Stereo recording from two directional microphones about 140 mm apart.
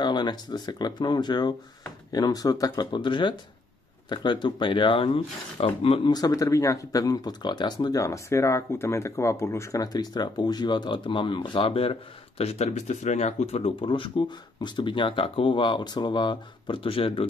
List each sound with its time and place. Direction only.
0.0 s speech: 30° left (ahead or behind)